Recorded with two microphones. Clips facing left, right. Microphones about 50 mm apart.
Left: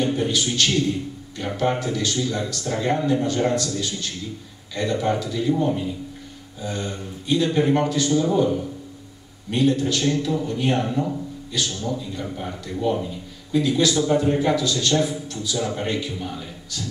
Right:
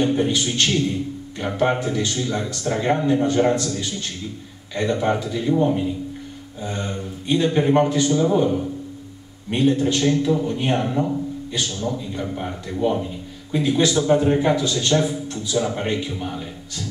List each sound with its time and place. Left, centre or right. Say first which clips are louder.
0.0 s a man's voice: right 2 dB; right
9.5 s a man's voice: right 2 dB; right